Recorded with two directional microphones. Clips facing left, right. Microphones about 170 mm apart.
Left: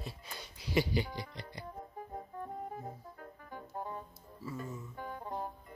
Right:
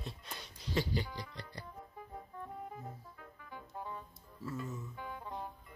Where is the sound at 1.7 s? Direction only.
40° left (ahead or behind).